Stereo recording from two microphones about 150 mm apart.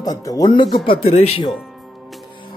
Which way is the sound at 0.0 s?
25° left (ahead or behind).